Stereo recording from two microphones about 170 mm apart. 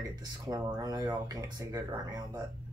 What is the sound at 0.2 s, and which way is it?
Speech, 25° right (ahead or behind).